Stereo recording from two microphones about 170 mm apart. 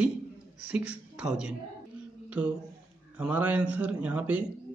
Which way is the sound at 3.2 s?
10° right (ahead or behind).